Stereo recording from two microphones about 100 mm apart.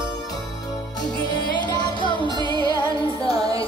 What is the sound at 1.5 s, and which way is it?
Music, 50° left (ahead or behind).